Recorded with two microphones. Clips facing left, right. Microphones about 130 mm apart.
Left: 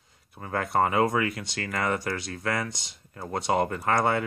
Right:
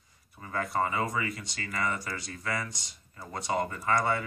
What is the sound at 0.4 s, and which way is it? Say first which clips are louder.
Speech: left 5 dB; 60° left (ahead or behind).